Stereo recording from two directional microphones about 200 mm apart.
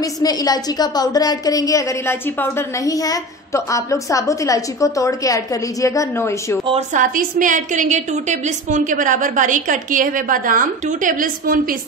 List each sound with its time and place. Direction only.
0.0 s a woman's voice: 20° left (ahead or behind)
6.6 s a woman's voice: 30° right (ahead or behind)
7.0 s a woman's voice: 40° right (ahead or behind)